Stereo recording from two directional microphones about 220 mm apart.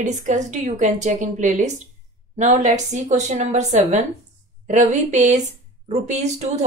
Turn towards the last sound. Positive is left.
turn(degrees=-30)  # may be behind; listen again after turning